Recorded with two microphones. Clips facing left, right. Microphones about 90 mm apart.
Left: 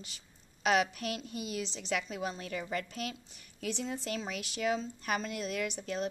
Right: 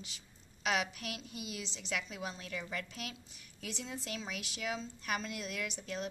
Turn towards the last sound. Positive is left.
turn(degrees=40)  # may be behind; listen again after turning